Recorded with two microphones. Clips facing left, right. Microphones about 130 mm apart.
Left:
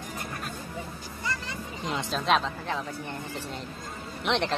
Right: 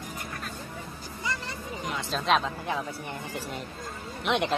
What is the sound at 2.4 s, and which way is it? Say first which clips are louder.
Speech: right 1 dB; 10° right (ahead or behind).